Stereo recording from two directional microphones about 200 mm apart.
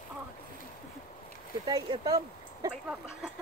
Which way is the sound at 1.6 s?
20° right (ahead or behind).